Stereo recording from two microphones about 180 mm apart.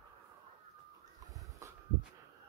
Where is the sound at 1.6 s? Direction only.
15° right (ahead or behind).